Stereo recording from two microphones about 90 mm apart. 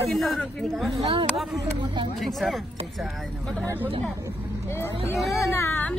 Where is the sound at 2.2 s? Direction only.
Centre (ahead or behind).